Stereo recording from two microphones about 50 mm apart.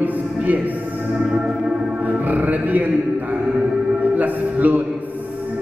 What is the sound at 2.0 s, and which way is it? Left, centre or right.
Music, right.